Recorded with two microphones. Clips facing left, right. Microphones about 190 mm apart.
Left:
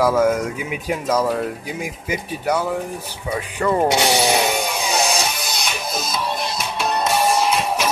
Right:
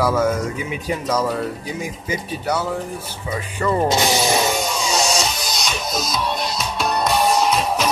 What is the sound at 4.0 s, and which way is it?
Music, 65° left (ahead or behind).